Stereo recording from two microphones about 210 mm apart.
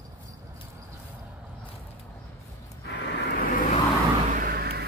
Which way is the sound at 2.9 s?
45° left (ahead or behind).